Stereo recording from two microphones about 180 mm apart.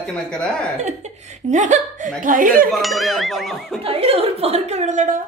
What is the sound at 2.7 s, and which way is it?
Speech, centre (ahead or behind).